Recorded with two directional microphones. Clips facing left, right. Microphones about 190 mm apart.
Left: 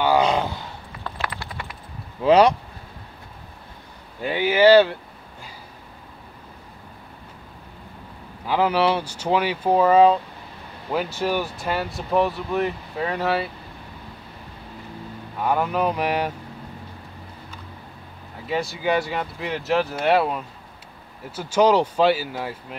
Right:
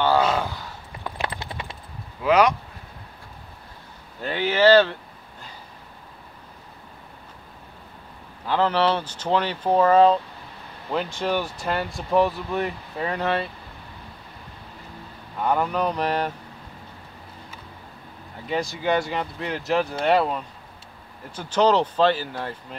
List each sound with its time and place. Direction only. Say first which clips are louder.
0.0 s a sound: left 1 dB; 15° left (ahead or behind)
1.2 s a sound: right 2 dB; 25° right (ahead or behind)
2.2 s speech: left 3 dB; 30° left (ahead or behind)
4.2 s speech: left 2 dB; 10° left (ahead or behind)
8.5 s speech: left 1 dB; 10° left (ahead or behind)
15.4 s speech: left 1 dB; 5° left (ahead or behind)
18.5 s speech: left 1 dB; centre (ahead or behind)